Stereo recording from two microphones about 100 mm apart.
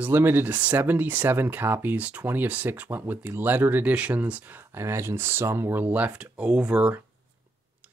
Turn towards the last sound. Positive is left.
turn(degrees=-10)  # may be behind; listen again after turning